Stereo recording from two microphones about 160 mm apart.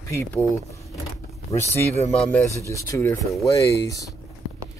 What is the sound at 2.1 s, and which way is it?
Speech, 5° left (ahead or behind).